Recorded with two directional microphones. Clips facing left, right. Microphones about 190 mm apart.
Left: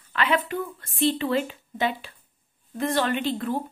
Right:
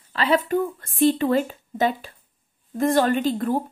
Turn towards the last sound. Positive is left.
turn(degrees=-45)  # may be behind; listen again after turning